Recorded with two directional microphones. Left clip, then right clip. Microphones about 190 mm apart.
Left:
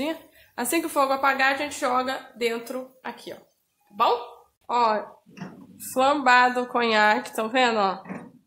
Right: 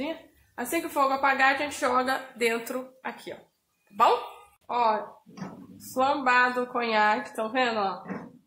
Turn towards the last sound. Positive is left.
turn(degrees=35)  # may be behind; listen again after turning